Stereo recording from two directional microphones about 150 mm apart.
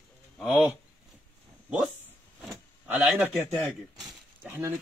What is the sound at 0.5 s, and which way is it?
Speech, 10° right (ahead or behind).